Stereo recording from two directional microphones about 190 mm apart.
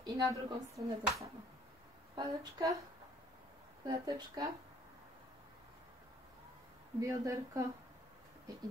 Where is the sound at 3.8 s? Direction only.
20° right (ahead or behind).